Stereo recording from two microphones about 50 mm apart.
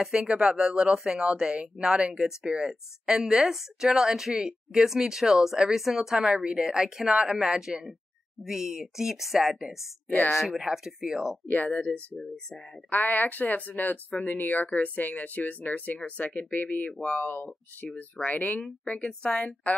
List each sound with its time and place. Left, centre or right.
0.0 s speech: centre
11.4 s a woman's voice: left
12.9 s a woman's voice: left